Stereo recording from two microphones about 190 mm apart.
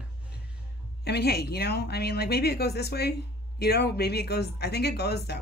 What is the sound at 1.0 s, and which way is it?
A woman's voice, 60° left (ahead or behind).